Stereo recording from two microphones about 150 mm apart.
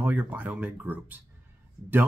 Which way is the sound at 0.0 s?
10° right (ahead or behind).